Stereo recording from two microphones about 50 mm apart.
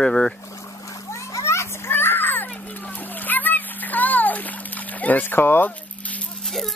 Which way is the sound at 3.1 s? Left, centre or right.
Left.